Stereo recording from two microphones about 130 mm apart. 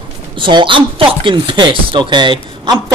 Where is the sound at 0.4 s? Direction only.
40° right (ahead or behind).